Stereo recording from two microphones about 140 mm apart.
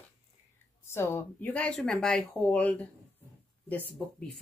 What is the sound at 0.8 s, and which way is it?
Speech, 15° left (ahead or behind).